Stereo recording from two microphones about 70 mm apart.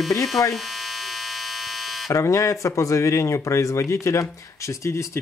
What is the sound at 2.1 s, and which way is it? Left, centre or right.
Speech, left.